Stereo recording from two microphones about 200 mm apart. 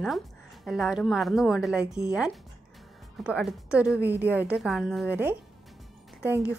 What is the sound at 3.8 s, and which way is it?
A woman's voice, 5° right (ahead or behind).